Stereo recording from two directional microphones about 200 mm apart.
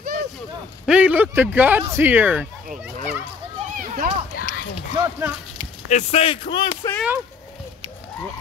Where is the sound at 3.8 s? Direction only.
45° right (ahead or behind).